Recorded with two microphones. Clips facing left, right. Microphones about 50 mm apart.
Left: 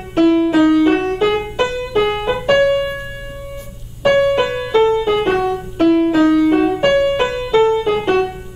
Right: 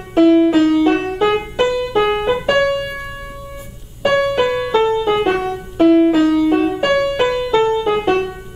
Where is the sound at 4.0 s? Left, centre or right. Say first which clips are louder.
Left 2 dB; centre.